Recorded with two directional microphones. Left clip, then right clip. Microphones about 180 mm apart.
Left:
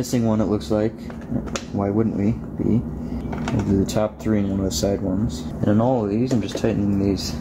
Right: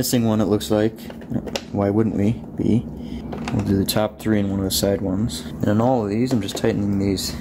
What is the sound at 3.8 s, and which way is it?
Speech, 40° right (ahead or behind).